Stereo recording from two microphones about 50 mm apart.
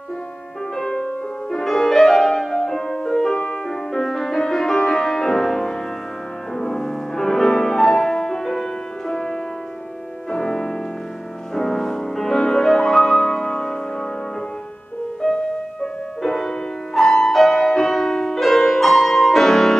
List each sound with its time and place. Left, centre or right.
0.7 s music: centre
15.2 s music: centre